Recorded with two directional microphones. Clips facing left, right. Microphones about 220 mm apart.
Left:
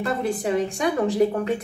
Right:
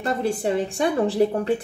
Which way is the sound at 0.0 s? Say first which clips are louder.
Right 1 dB; 30° right (ahead or behind).